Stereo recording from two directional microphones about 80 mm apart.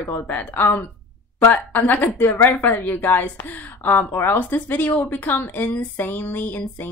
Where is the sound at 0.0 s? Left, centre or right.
Left.